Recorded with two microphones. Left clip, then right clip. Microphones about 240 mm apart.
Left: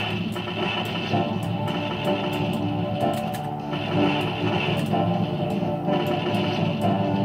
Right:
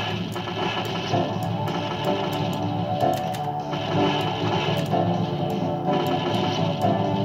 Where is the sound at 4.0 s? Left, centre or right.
Right.